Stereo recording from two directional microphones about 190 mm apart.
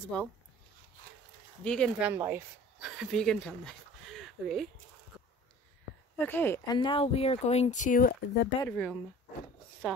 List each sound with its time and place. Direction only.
1.6 s speech: 5° left (ahead or behind)
2.0 s speech: 10° right (ahead or behind)
4.2 s a sound: centre (ahead or behind)
6.1 s speech: 10° left (ahead or behind)
6.8 s speech: 30° left (ahead or behind); by 8.5 s 50° left (ahead or behind)
8.6 s speech: 5° left (ahead or behind)